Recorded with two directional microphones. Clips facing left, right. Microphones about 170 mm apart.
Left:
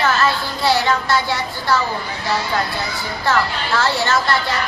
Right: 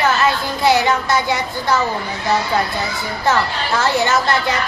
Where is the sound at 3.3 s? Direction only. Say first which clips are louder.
Right 1 dB; 20° right (ahead or behind).